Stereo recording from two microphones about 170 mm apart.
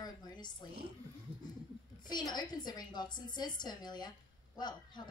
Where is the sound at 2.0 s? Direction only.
25° left (ahead or behind).